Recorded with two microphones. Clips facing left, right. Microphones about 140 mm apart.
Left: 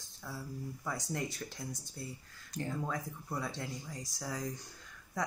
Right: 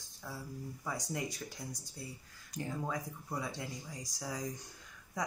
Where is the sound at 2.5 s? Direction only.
15° right (ahead or behind).